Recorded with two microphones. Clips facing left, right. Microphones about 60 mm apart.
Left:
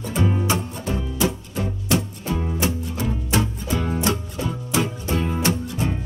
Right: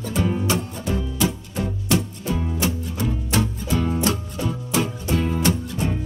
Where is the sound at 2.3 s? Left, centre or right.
Centre.